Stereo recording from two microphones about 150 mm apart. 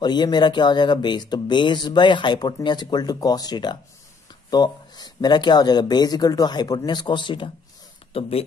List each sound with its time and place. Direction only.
0.0 s speech: 30° left (ahead or behind)